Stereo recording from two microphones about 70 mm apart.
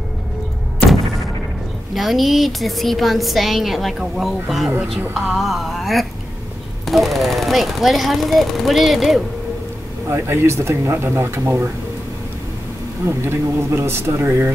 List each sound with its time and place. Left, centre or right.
2.0 s a woman's voice: centre
10.0 s speech: right
13.0 s speech: right